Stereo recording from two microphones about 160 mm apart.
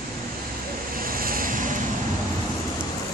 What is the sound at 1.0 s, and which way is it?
Vehicle, 65° right (ahead or behind).